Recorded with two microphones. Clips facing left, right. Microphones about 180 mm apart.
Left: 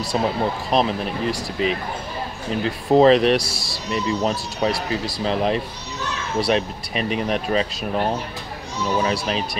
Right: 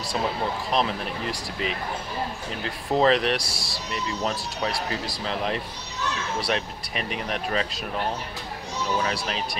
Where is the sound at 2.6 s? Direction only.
20° left (ahead or behind).